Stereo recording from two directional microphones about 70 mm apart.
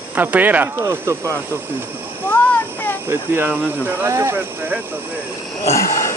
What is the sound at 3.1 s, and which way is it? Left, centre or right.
Speech, right.